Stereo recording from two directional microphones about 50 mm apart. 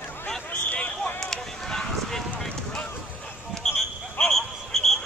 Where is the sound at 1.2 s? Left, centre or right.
Centre.